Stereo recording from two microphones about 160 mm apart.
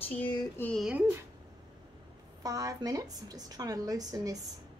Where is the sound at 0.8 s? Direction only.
10° right (ahead or behind).